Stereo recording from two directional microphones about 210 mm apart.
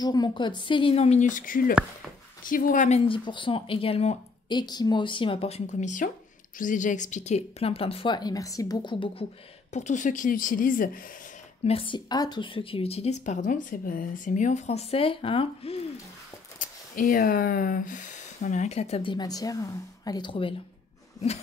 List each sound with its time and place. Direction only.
0.0 s a woman's voice: 20° left (ahead or behind)
9.7 s speech: 35° left (ahead or behind)
11.6 s a woman's voice: 25° left (ahead or behind)
16.9 s speech: 40° left (ahead or behind)